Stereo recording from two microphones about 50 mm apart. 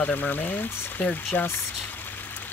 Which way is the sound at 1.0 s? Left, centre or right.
Left.